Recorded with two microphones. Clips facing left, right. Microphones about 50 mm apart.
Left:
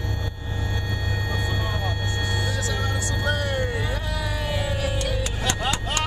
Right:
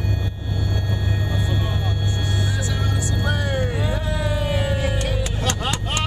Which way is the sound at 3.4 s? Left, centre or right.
Right.